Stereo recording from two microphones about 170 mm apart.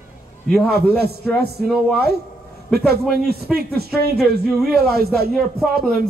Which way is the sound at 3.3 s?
65° right (ahead or behind).